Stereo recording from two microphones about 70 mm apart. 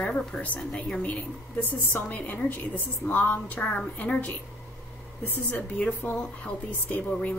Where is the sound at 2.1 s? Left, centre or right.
Left.